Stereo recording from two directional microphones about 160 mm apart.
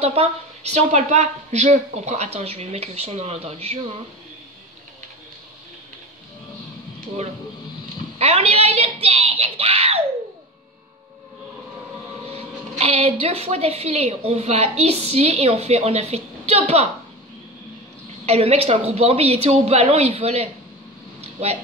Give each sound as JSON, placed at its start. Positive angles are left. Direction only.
{"t": 0.0, "sound": "a woman's voice", "side_deg": -40}
{"t": 8.2, "sound": "a woman's voice", "side_deg": -40}
{"t": 9.0, "sound": "a sound", "side_deg": -35}
{"t": 12.3, "sound": "a woman's voice", "side_deg": -40}
{"t": 18.2, "sound": "a woman's voice", "side_deg": -40}
{"t": 21.2, "sound": "a sound", "side_deg": -40}